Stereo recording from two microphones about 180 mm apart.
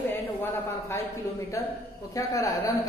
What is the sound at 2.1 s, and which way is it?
Speech, 20° left (ahead or behind).